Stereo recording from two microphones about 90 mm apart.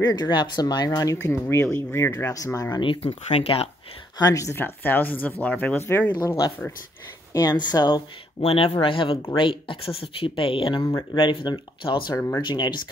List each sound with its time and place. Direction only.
0.0 s speech: 50° left (ahead or behind)
1.7 s speech: 20° left (ahead or behind); by 2.8 s 40° left (ahead or behind)
2.8 s speech: 75° left (ahead or behind)
4.2 s speech: 40° left (ahead or behind)
4.6 s speech: 25° left (ahead or behind)
6.2 s speech: 40° left (ahead or behind)
8.5 s speech: 90° left
8.8 s speech: 75° left (ahead or behind)
11.1 s speech: 55° left (ahead or behind)
12.1 s speech: 35° left (ahead or behind)
12.4 s speech: 60° left (ahead or behind)